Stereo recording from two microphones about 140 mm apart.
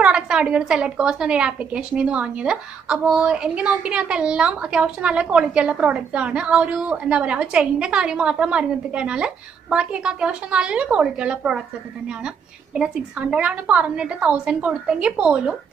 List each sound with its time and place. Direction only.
0.0 s a woman's voice: 5° right (ahead or behind)
12.7 s a woman's voice: 5° right (ahead or behind)